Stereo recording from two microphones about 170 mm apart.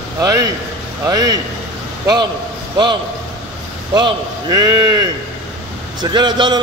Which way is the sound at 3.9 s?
25° right (ahead or behind).